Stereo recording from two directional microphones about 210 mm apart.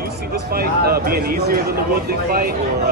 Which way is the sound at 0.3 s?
45° right (ahead or behind).